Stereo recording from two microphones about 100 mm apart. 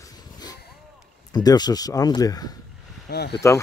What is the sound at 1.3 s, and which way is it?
Speech, 40° left (ahead or behind).